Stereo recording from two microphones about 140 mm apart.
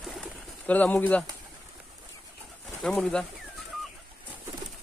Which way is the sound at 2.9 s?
5° left (ahead or behind).